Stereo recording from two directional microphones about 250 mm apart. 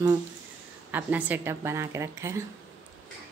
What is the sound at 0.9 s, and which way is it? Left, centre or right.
A woman's voice, centre.